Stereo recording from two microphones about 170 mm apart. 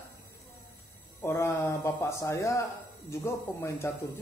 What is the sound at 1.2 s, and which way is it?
Speech, 15° left (ahead or behind).